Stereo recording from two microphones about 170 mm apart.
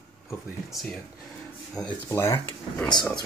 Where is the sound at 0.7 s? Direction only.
Centre (ahead or behind).